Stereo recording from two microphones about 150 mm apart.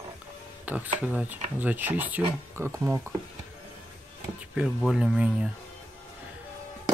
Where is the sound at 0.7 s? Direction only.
10° right (ahead or behind).